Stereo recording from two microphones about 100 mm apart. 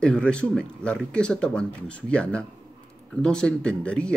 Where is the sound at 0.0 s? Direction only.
10° left (ahead or behind).